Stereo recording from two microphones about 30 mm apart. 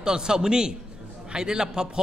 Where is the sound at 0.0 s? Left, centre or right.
Right.